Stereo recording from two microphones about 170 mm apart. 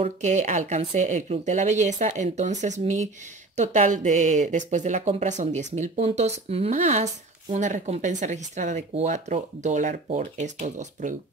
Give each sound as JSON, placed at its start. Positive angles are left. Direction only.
{"t": 0.0, "sound": "speech", "side_deg": -45}